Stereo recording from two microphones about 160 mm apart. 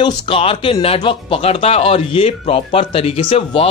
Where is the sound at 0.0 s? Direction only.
35° left (ahead or behind).